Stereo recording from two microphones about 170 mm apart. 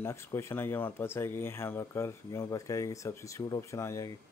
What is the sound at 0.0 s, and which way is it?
Speech, 15° left (ahead or behind).